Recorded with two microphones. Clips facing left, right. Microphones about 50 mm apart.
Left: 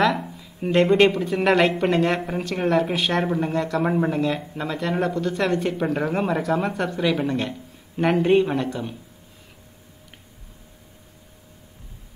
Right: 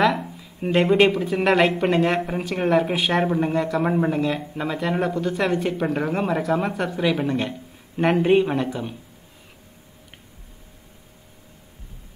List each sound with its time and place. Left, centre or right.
0.0 s speech: centre